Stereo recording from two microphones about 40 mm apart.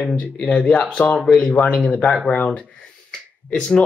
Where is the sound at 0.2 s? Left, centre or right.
Left.